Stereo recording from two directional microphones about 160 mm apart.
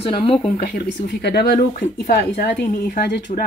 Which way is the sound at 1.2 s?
75° left (ahead or behind).